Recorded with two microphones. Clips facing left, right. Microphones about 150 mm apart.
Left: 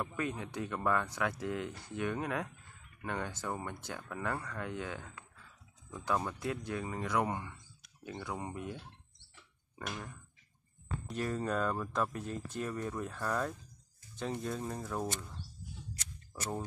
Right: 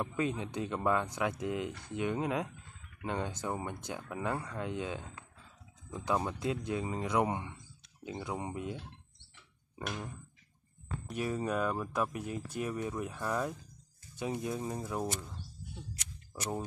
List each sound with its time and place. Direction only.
0.0 s speech: 20° right (ahead or behind)
11.1 s speech: 10° right (ahead or behind)